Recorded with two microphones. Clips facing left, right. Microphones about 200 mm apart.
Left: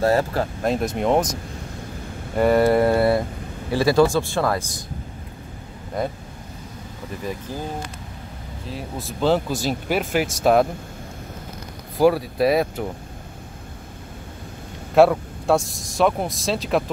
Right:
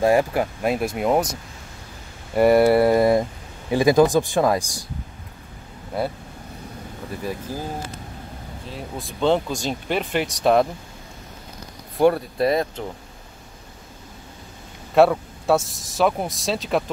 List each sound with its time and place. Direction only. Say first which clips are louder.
0.0 s speech: right 1 dB; 15° right (ahead or behind)
2.3 s speech: right 2 dB; 10° right (ahead or behind)
8.6 s speech: left 2 dB; centre (ahead or behind)
12.0 s speech: left 1 dB; 5° left (ahead or behind)
15.0 s speech: left 1 dB; centre (ahead or behind)